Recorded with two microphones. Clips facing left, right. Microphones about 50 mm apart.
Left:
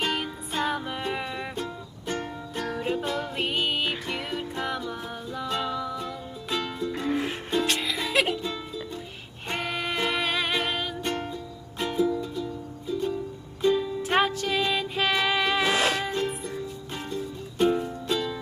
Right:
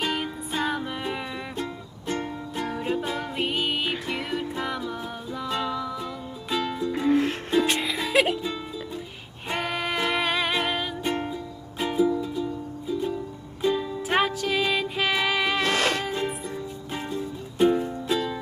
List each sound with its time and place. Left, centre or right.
0.0 s music: centre
7.6 s music: centre
8.0 s music: centre
13.6 s music: centre
16.1 s music: centre